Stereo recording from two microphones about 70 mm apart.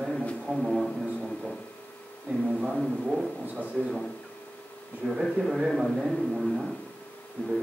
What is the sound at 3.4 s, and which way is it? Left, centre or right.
Speech, right.